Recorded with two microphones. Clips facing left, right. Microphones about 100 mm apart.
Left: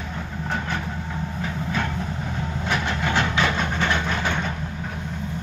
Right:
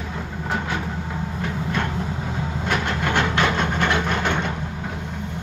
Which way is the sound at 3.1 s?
55° right (ahead or behind).